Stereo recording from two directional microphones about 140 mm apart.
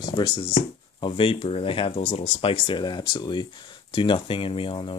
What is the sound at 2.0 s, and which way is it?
Speech, 50° left (ahead or behind).